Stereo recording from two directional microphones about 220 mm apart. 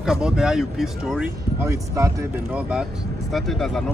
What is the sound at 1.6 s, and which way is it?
Speech, 15° right (ahead or behind).